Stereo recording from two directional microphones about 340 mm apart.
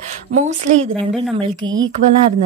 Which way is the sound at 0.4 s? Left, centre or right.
Right.